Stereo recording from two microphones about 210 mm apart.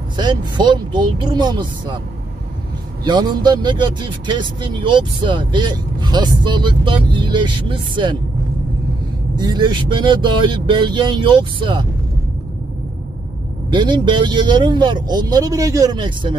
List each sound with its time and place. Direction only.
0.2 s speech: 20° right (ahead or behind)
3.0 s speech: 20° right (ahead or behind)
9.4 s speech: 20° right (ahead or behind)
13.7 s speech: 20° right (ahead or behind)